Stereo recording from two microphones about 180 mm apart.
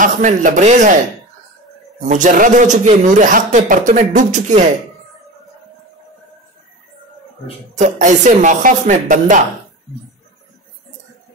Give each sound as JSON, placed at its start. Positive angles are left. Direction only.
{"t": 0.0, "sound": "a man's voice", "side_deg": -45}
{"t": 2.0, "sound": "a man's voice", "side_deg": -45}
{"t": 7.7, "sound": "a man's voice", "side_deg": -40}